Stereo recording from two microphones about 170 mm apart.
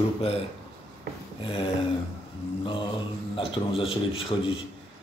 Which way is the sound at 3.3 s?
35° left (ahead or behind).